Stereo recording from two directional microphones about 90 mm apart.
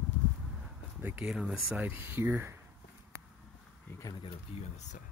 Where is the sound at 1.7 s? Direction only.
20° right (ahead or behind).